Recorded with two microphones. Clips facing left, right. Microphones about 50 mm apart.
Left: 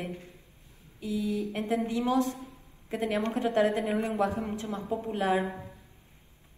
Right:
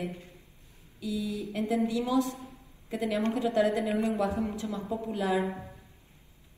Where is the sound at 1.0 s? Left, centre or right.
Left.